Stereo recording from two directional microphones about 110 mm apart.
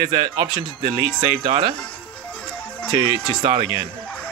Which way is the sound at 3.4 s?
40° right (ahead or behind).